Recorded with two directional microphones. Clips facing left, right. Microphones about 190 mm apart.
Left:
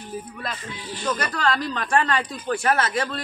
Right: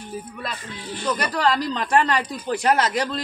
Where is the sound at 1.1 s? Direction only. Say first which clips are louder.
Right 3 dB; 15° right (ahead or behind).